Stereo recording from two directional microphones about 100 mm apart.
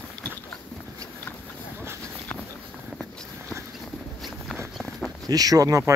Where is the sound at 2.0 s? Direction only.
10° left (ahead or behind).